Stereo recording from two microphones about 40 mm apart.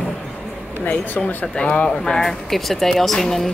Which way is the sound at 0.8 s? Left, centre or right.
Left.